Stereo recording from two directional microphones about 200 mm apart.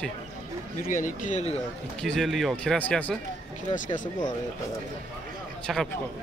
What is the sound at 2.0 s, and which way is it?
Speech, centre (ahead or behind).